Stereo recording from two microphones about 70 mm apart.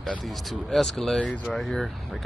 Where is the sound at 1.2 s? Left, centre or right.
Centre.